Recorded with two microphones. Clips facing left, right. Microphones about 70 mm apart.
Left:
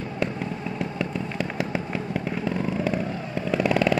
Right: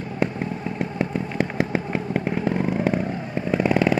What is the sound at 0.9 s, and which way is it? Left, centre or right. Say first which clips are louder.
Vehicle: right 4 dB; right.